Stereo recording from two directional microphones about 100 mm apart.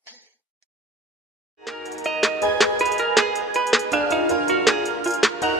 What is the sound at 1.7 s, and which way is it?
Music, centre (ahead or behind).